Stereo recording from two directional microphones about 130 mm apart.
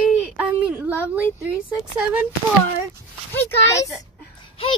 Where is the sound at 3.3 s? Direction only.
20° left (ahead or behind).